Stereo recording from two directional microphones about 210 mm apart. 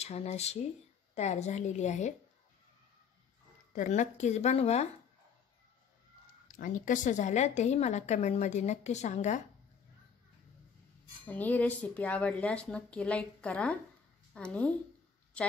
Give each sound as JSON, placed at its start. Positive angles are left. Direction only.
{"t": 0.0, "sound": "a woman's voice", "side_deg": 30}
{"t": 3.7, "sound": "a woman's voice", "side_deg": 35}
{"t": 6.5, "sound": "a woman's voice", "side_deg": 40}
{"t": 11.2, "sound": "a woman's voice", "side_deg": 10}